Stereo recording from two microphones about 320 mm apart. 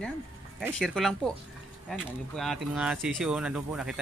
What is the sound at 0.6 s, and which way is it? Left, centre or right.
Speech, centre.